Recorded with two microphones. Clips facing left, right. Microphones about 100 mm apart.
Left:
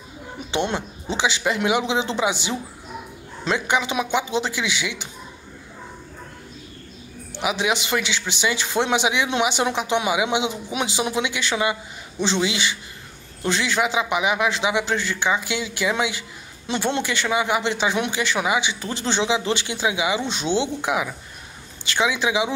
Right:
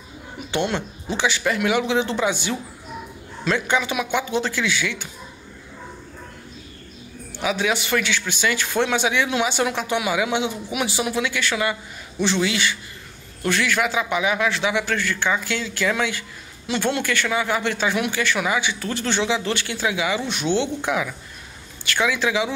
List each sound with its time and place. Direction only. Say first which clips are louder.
0.5 s a man's voice: right 1 dB; 20° left (ahead or behind)
7.4 s a man's voice: even; 20° left (ahead or behind)